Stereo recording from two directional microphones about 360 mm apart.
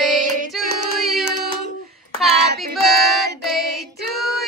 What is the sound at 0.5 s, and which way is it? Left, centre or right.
Singing, centre.